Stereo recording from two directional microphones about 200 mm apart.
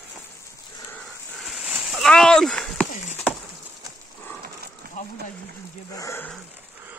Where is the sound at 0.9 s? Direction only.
Centre (ahead or behind).